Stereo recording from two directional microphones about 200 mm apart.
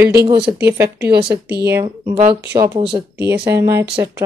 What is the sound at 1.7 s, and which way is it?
Speech, 20° right (ahead or behind).